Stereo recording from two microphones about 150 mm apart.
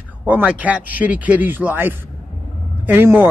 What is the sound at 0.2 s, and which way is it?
A man's voice, 10° right (ahead or behind).